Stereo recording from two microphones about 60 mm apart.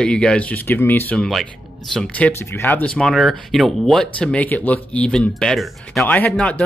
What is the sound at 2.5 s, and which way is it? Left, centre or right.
Speech, left.